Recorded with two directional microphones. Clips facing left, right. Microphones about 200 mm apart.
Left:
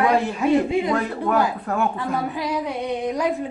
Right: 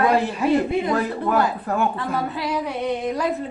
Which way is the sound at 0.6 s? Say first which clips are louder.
Left 1 dB; 15° left (ahead or behind).